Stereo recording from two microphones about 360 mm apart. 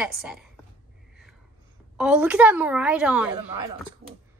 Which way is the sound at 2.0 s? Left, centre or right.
Centre.